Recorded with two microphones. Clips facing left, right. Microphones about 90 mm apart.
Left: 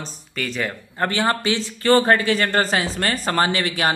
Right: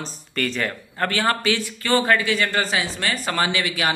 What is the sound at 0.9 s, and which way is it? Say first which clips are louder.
Speech: left 1 dB; 20° left (ahead or behind).